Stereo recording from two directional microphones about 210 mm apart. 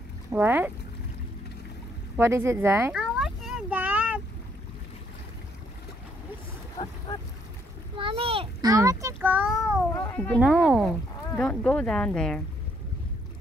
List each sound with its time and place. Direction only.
0.3 s a child's voice: 10° right (ahead or behind)
2.1 s a sound: 10° right (ahead or behind)
6.8 s speech: 30° left (ahead or behind)
8.0 s a child's voice: 25° right (ahead or behind); by 9.8 s 5° right (ahead or behind)
9.9 s speech: 10° left (ahead or behind)